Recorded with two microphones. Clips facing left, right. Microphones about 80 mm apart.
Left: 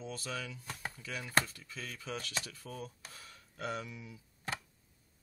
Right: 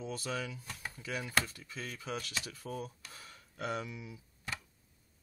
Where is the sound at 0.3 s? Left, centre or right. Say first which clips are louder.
Right 3 dB; centre.